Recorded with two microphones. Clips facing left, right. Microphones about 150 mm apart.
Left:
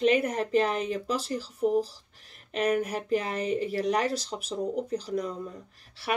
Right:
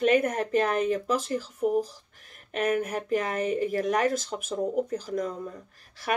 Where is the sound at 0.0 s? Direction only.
50° right (ahead or behind).